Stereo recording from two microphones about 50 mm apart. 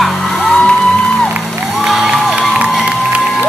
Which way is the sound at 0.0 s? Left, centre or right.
Centre.